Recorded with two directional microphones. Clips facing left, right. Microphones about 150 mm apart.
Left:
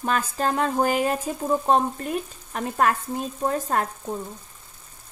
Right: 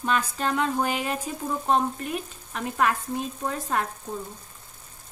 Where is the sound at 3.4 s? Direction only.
40° left (ahead or behind).